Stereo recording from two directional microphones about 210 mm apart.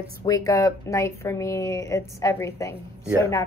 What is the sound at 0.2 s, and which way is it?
A woman's voice, 15° left (ahead or behind).